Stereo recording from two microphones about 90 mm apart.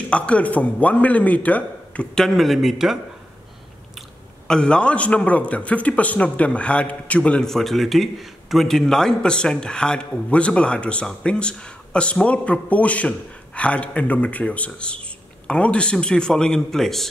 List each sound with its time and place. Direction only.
0.1 s a man's voice: 15° left (ahead or behind)
2.1 s a man's voice: centre (ahead or behind)
4.5 s a man's voice: 10° left (ahead or behind)